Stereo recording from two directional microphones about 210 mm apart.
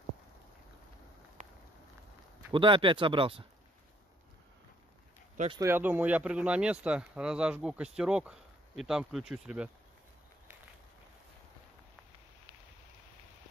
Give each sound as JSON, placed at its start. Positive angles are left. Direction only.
{"t": 2.5, "sound": "speech", "side_deg": -25}
{"t": 5.6, "sound": "speech", "side_deg": -10}